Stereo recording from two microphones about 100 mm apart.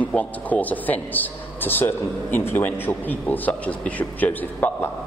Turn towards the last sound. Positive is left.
turn(degrees=15)  # may be behind; listen again after turning